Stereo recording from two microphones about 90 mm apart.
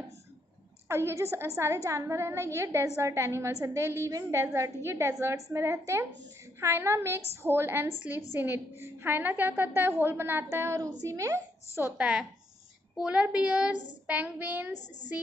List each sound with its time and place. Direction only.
0.8 s a woman's voice: 30° right (ahead or behind)
12.0 s a child's voice: 10° right (ahead or behind)